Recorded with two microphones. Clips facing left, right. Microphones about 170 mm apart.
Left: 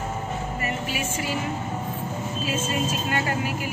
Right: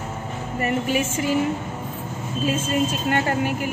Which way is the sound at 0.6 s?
50° right (ahead or behind).